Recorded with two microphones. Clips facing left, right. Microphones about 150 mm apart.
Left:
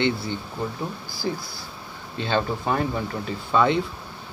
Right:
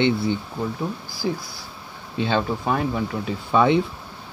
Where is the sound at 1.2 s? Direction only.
10° right (ahead or behind).